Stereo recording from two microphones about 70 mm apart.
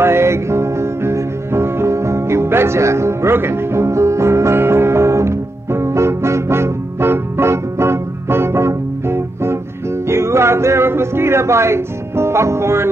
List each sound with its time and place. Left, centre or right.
0.0 s music: right